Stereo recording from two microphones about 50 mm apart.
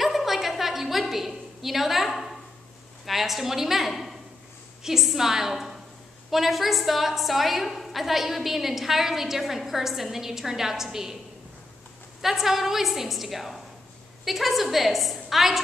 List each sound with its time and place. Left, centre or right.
0.0 s a sound: centre
3.1 s a woman's voice: centre
12.2 s a woman's voice: centre